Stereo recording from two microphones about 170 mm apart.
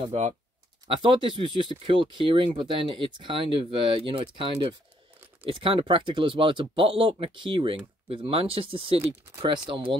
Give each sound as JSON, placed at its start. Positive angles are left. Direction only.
{"t": 0.0, "sound": "speech", "side_deg": -40}
{"t": 0.9, "sound": "speech", "side_deg": -30}